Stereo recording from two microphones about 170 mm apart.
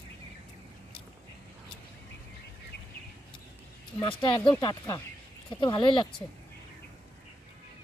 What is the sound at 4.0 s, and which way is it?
Speech, 30° left (ahead or behind).